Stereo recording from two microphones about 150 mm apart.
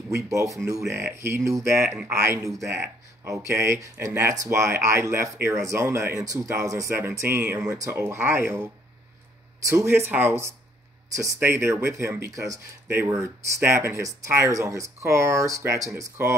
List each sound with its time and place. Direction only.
0.1 s speech: 20° right (ahead or behind)
9.7 s speech: 20° right (ahead or behind)